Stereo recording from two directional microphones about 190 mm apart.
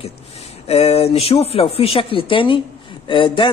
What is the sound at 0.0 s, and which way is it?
A man's voice, 30° left (ahead or behind).